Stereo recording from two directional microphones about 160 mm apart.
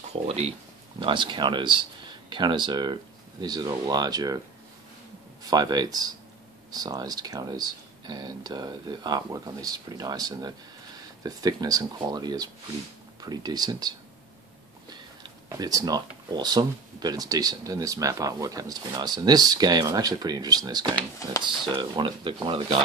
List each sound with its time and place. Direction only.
0.3 s speech: 40° right (ahead or behind)
5.4 s speech: 25° right (ahead or behind)